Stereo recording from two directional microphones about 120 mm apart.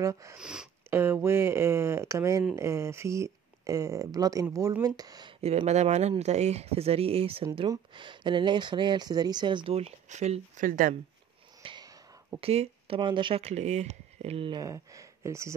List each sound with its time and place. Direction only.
0.0 s speech: 25° right (ahead or behind)
0.4 s speech: 5° right (ahead or behind)
0.8 s speech: 20° right (ahead or behind)
5.4 s speech: 60° right (ahead or behind)
7.9 s speech: 40° right (ahead or behind)
9.8 s speech: 70° right (ahead or behind)
11.6 s wheeze: 40° right (ahead or behind)
12.4 s speech: 55° right (ahead or behind)
14.5 s speech: 30° right (ahead or behind)